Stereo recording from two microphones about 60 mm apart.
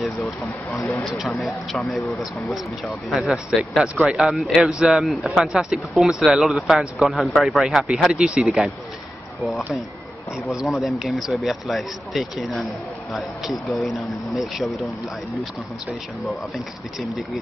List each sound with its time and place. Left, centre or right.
0.2 s speech: left
1.4 s speech: centre
10.3 s speech: centre
10.7 s speech: centre
16.5 s speech: centre